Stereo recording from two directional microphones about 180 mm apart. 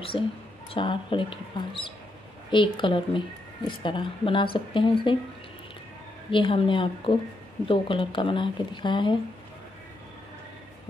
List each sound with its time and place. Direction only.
0.1 s a woman's voice: 25° left (ahead or behind)
6.3 s a woman's voice: 30° left (ahead or behind)